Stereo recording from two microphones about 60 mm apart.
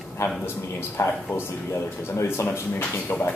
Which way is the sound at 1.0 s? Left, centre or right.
Left.